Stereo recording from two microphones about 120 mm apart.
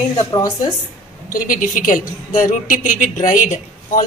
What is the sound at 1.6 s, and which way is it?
A woman's voice, 90° left.